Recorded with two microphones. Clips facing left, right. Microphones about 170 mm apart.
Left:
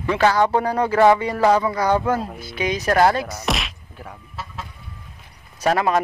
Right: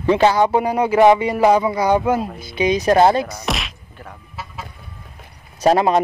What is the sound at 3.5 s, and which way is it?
Whack, centre (ahead or behind).